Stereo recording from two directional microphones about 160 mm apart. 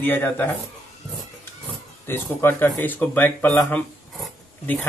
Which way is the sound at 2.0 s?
15° left (ahead or behind).